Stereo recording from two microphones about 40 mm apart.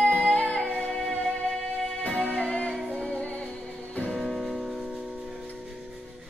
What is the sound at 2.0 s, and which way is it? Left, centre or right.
Music, left.